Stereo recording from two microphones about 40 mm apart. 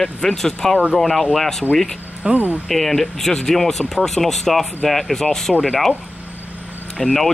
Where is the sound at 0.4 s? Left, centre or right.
Centre.